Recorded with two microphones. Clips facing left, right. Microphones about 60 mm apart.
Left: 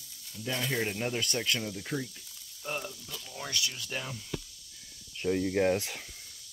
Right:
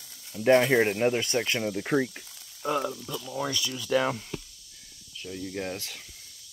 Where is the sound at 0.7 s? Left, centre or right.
Right.